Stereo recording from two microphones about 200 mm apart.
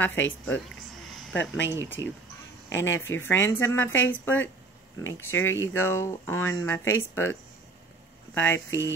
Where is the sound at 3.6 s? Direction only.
10° left (ahead or behind).